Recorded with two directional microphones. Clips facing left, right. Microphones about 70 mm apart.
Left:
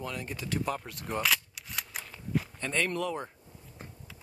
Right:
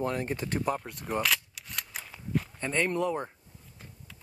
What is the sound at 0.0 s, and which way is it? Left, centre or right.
Speech, right.